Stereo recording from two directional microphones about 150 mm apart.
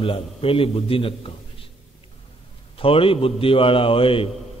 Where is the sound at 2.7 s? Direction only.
40° left (ahead or behind).